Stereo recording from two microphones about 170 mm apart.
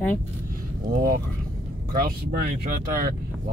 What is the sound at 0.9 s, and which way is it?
Speech, 55° right (ahead or behind).